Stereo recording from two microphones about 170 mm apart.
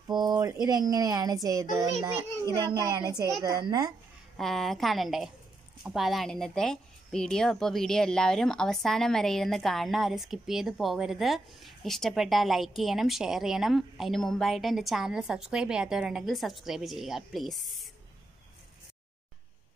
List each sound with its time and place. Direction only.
0.1 s a child's voice: 25° right (ahead or behind)
2.0 s a child's voice: 30° right (ahead or behind)
2.7 s a child's voice: 20° right (ahead or behind)
4.4 s a woman's voice: centre (ahead or behind)